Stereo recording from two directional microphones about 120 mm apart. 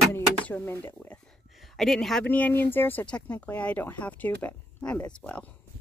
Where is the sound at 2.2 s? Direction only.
15° left (ahead or behind).